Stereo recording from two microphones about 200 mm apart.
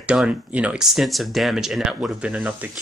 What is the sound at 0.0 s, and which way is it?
Speech, 5° right (ahead or behind).